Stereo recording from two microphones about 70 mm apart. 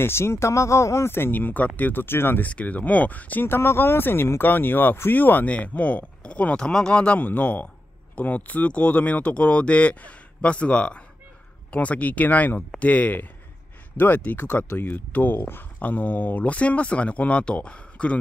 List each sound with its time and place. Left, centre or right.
0.0 s speech: left; by 18.2 s centre